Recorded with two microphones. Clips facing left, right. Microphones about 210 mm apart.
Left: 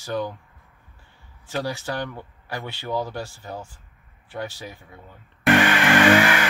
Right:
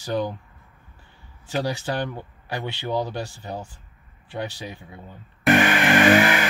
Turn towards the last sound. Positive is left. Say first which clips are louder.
# even
turn(degrees=-15)  # may be behind; listen again after turning